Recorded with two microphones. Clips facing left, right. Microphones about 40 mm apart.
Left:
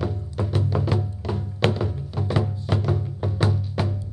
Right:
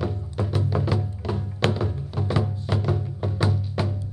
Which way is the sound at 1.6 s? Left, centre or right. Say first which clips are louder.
Left 1 dB; centre.